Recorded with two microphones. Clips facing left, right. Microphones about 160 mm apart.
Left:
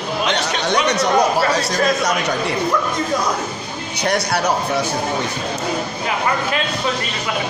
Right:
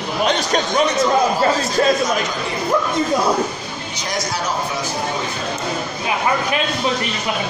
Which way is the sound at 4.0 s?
65° left (ahead or behind).